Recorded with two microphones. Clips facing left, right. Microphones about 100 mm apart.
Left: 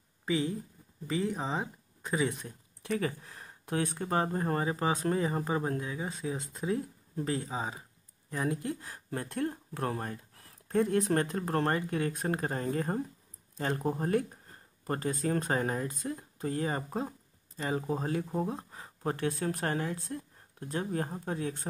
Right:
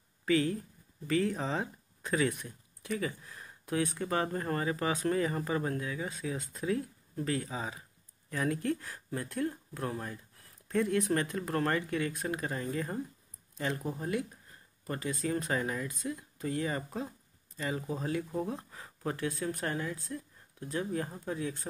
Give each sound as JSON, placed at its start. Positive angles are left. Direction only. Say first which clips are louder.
{"t": 0.2, "sound": "speech", "louder": "right 2 dB", "side_deg": 20}
{"t": 2.4, "sound": "speech", "louder": "left 2 dB", "side_deg": 50}
{"t": 4.0, "sound": "speech", "louder": "left 2 dB", "side_deg": 30}
{"t": 9.1, "sound": "speech", "louder": "left 1 dB", "side_deg": 50}
{"t": 10.8, "sound": "speech", "louder": "left 2 dB", "side_deg": 40}
{"t": 19.1, "sound": "speech", "louder": "left 3 dB", "side_deg": 60}